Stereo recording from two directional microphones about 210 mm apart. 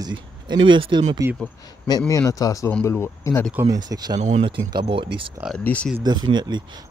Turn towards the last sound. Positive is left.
turn(degrees=-20)  # may be behind; listen again after turning